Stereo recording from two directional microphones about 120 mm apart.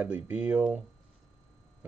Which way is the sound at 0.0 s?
15° right (ahead or behind).